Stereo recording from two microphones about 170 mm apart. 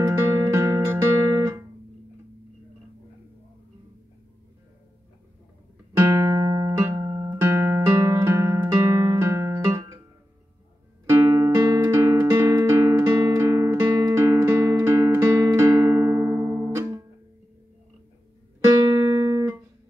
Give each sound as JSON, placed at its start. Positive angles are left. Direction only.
{"t": 0.0, "sound": "music", "side_deg": -15}
{"t": 5.9, "sound": "music", "side_deg": -15}
{"t": 11.1, "sound": "music", "side_deg": -20}
{"t": 18.6, "sound": "music", "side_deg": -20}